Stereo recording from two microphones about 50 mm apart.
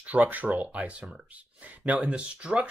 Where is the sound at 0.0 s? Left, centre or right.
Right.